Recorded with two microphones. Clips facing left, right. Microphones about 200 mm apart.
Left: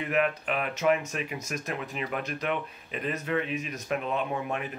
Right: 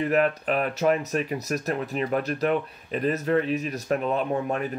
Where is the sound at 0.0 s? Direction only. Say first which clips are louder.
Right 5 dB; 40° right (ahead or behind).